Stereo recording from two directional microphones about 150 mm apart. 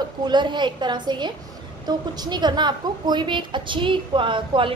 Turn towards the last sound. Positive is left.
turn(degrees=-35)  # may be behind; listen again after turning